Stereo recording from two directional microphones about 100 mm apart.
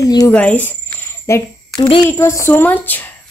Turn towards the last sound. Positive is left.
turn(degrees=20)  # may be behind; listen again after turning